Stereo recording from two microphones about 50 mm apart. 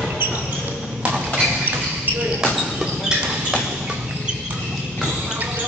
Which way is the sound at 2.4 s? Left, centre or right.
Centre.